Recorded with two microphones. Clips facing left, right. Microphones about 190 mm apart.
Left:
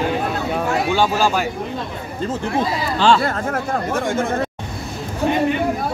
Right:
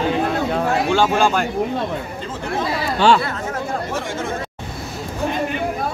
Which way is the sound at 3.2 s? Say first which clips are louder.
Left 3 dB; 50° left (ahead or behind).